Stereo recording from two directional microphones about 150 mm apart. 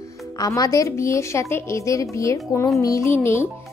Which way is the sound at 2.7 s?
20° left (ahead or behind).